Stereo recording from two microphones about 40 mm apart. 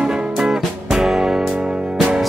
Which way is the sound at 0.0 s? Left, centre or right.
Centre.